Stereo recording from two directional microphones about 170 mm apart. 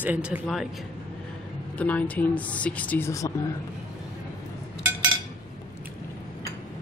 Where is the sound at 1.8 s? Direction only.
10° left (ahead or behind).